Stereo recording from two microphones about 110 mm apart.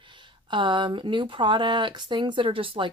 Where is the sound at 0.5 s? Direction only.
45° right (ahead or behind).